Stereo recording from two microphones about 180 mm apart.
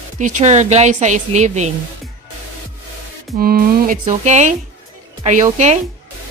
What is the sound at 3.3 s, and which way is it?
A woman's voice, 55° right (ahead or behind).